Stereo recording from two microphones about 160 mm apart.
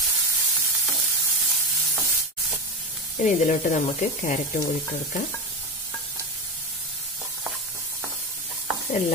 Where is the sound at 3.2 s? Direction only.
50° left (ahead or behind).